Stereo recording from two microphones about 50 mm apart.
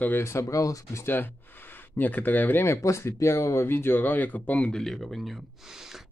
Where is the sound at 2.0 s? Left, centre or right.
Left.